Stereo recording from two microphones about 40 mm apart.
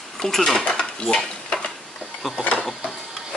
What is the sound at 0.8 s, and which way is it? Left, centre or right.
Stir, left.